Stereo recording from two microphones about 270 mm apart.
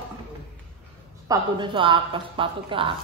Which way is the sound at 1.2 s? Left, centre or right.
Centre.